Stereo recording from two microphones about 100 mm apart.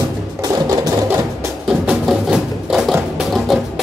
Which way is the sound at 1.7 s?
5° right (ahead or behind).